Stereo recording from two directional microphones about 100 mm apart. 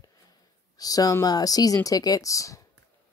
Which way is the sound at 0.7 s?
40° left (ahead or behind).